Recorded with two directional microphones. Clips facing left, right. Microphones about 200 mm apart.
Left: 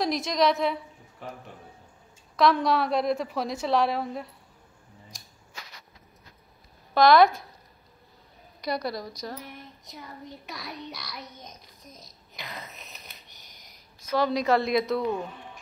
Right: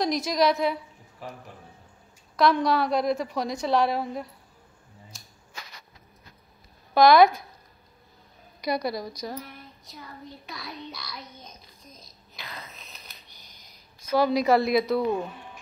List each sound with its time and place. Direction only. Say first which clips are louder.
0.0 s a woman's voice: right 1 dB; centre (ahead or behind)
2.3 s a woman's voice: even; centre (ahead or behind)
6.9 s speech: right 2 dB; 5° right (ahead or behind)
8.6 s a woman's voice: right 2 dB; 5° right (ahead or behind)
9.4 s child singing: even; 20° left (ahead or behind)
13.9 s a woman's voice: right 3 dB; 5° right (ahead or behind)